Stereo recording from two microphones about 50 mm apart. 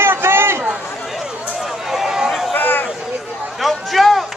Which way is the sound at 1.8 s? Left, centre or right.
Centre.